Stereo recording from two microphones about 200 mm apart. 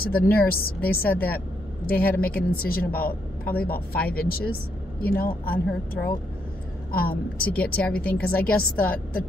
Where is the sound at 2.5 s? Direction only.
50° left (ahead or behind).